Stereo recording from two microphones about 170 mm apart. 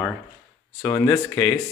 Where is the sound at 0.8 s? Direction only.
15° left (ahead or behind).